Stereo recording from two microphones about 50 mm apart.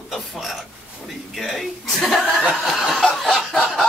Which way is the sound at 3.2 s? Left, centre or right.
Centre.